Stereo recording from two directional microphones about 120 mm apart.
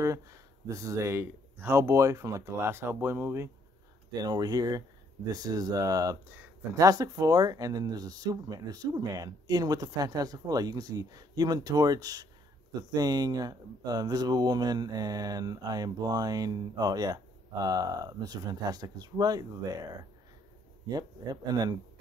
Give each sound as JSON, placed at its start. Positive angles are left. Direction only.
{"t": 0.0, "sound": "speech", "side_deg": -25}
{"t": 4.2, "sound": "speech", "side_deg": -30}
{"t": 20.9, "sound": "speech", "side_deg": -35}